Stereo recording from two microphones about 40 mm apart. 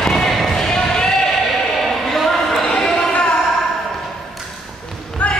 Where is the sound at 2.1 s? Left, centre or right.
Centre.